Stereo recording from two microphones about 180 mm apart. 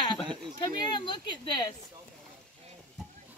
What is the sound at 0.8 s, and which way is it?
Speech, 25° left (ahead or behind).